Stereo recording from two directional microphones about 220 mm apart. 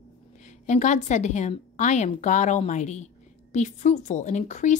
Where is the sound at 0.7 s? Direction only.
35° left (ahead or behind).